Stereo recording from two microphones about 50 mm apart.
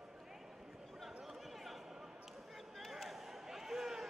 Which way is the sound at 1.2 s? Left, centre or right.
Centre.